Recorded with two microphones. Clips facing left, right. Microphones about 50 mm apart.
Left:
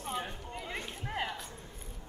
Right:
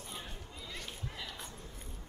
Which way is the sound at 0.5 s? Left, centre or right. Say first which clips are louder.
Left 6 dB; left.